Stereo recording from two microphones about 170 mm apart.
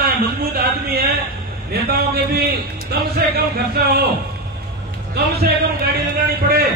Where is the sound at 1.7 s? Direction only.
65° right (ahead or behind).